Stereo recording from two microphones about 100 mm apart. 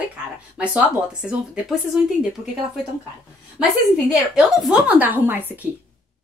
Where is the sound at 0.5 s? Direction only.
10° right (ahead or behind).